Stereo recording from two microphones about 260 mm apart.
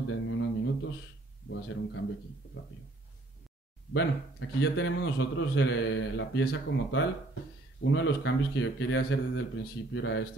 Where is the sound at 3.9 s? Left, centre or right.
Left.